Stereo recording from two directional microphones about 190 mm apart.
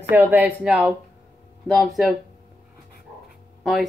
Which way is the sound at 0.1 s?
10° right (ahead or behind).